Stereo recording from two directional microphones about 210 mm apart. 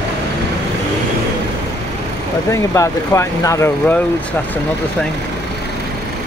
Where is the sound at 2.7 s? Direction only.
15° left (ahead or behind).